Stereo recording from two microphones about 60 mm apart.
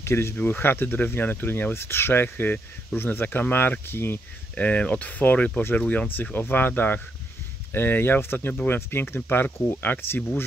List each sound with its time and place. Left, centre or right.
0.0 s speech: left
0.4 s speech: left
4.6 s speech: left